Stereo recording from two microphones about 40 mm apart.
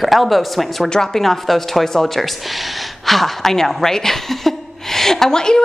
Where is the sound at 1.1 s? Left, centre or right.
Centre.